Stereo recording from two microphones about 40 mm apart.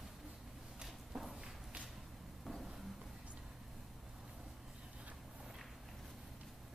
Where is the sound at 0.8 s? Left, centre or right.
Centre.